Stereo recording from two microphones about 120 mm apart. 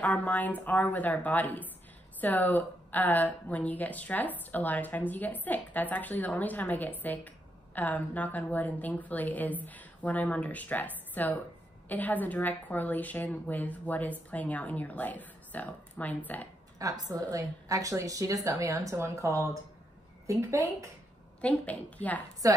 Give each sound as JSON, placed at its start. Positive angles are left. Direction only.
{"t": 0.0, "sound": "speech", "side_deg": 10}
{"t": 16.7, "sound": "a woman's voice", "side_deg": -30}
{"t": 21.4, "sound": "speech", "side_deg": 10}
{"t": 22.4, "sound": "a woman's voice", "side_deg": -30}